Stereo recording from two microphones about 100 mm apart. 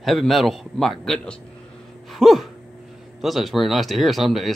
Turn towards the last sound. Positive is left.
turn(degrees=0)  # may be behind; listen again after turning